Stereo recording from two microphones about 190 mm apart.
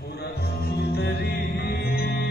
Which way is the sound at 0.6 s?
55° left (ahead or behind).